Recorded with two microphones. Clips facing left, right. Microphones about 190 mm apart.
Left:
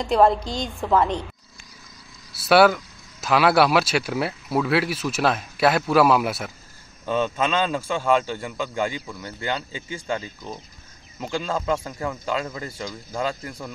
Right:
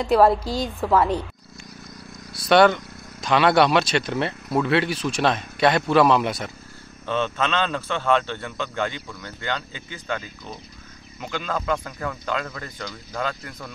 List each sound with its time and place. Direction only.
0.3 s speech: 5° right (ahead or behind)
2.4 s a man's voice: 5° left (ahead or behind)
10.0 s speech: 30° left (ahead or behind)